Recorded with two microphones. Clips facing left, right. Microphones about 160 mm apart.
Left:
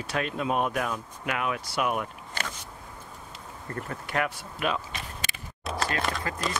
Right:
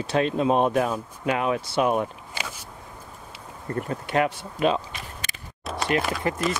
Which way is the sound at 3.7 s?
25° right (ahead or behind).